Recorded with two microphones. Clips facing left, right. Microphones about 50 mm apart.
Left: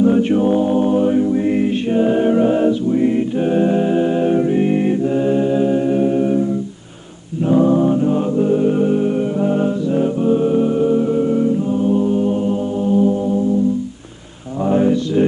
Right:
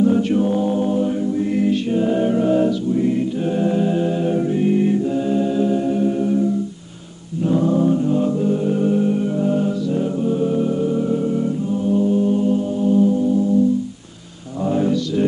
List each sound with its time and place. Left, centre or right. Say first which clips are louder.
0.0 s a capella: left 3 dB; left
7.4 s music: left 3 dB; left
14.6 s mantra: left 4 dB; left